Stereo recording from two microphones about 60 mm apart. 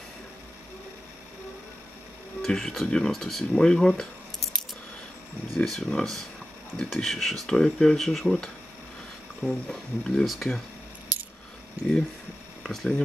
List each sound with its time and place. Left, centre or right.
2.4 s speech: centre
5.7 s speech: centre
11.8 s speech: right
12.6 s speech: centre